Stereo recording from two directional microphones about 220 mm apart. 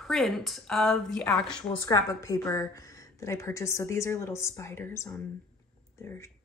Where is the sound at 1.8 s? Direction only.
15° left (ahead or behind).